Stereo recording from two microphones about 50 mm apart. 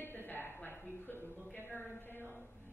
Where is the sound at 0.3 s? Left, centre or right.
Left.